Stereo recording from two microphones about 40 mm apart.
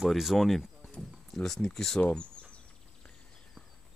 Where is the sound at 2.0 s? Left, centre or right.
Left.